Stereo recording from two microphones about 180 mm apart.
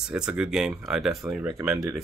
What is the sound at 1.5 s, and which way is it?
Speech, 15° right (ahead or behind).